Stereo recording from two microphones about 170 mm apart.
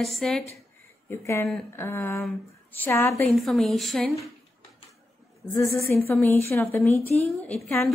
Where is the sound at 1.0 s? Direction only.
15° left (ahead or behind).